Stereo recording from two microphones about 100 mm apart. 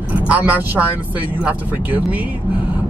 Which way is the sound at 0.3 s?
15° right (ahead or behind).